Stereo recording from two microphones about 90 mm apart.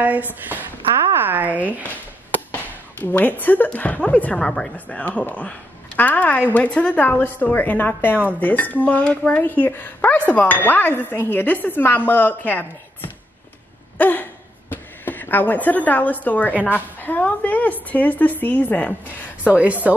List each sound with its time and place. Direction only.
0.0 s a woman's voice: 20° right (ahead or behind)
1.1 s a sound: 20° right (ahead or behind)
2.5 s a woman's voice: 20° left (ahead or behind)
13.9 s a sound: 20° left (ahead or behind)
14.7 s a woman's voice: 20° left (ahead or behind)
19.5 s a woman's voice: 15° right (ahead or behind)